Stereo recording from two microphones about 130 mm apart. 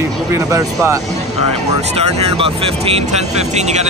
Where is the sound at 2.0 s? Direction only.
55° right (ahead or behind).